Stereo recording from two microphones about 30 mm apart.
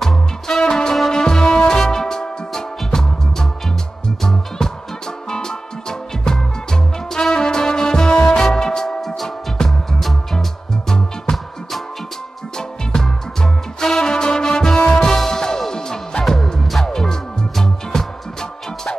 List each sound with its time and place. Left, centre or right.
0.0 s music: centre
0.7 s music: left
4.6 s music: left
9.7 s music: centre
10.9 s music: centre
12.5 s music: left